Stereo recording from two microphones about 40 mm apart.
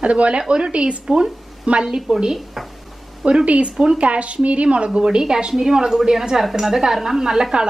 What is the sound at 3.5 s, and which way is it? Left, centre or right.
Speech, right.